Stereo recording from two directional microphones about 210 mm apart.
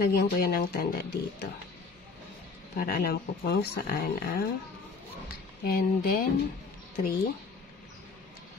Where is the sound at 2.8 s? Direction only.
45° left (ahead or behind).